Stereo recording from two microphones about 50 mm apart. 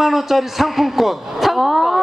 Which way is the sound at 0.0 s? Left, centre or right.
Centre.